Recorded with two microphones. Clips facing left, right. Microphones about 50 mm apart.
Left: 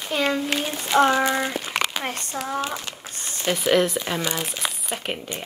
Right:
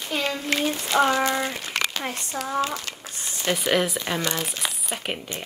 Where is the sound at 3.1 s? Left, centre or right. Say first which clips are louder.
Left 1 dB; left.